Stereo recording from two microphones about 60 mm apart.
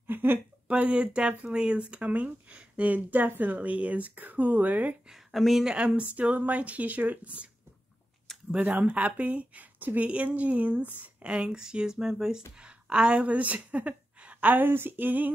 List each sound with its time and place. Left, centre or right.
0.0 s a sound: right
0.7 s speech: right
5.3 s a woman's voice: centre
5.7 s speech: centre
8.6 s a woman's voice: right